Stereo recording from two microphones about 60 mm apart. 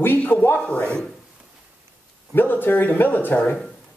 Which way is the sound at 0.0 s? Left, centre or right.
Left.